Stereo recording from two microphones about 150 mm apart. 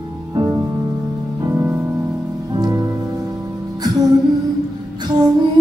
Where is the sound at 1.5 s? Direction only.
10° right (ahead or behind).